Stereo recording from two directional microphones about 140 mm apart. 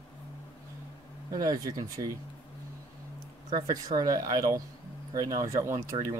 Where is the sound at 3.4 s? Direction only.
30° right (ahead or behind).